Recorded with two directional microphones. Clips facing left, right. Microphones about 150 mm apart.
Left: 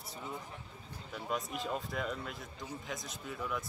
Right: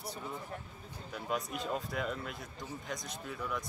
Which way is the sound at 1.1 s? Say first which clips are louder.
Right 1 dB; centre (ahead or behind).